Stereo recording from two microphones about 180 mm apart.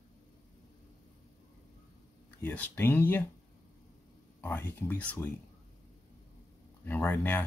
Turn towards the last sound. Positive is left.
turn(degrees=5)  # may be behind; listen again after turning